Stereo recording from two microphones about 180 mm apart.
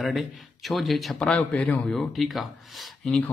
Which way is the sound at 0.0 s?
Centre (ahead or behind).